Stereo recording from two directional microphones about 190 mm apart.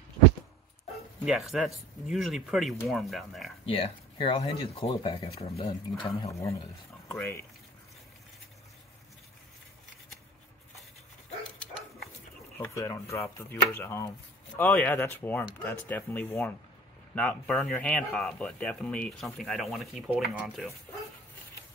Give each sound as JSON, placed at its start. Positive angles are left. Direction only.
{"t": 1.2, "sound": "speech", "side_deg": 0}
{"t": 3.6, "sound": "speech", "side_deg": 30}
{"t": 7.1, "sound": "speech", "side_deg": 15}
{"t": 12.5, "sound": "speech", "side_deg": 10}